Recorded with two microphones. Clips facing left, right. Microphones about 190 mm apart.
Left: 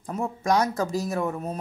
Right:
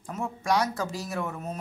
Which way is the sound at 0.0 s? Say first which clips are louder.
Left 4 dB; 40° left (ahead or behind).